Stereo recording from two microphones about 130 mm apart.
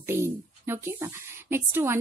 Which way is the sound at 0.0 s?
20° right (ahead or behind).